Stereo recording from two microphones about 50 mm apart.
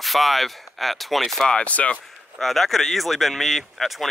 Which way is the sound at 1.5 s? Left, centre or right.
Left.